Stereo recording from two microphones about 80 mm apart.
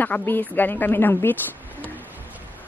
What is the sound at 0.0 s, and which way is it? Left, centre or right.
A woman's voice, left.